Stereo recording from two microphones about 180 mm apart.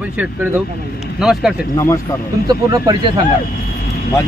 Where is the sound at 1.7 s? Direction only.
15° left (ahead or behind).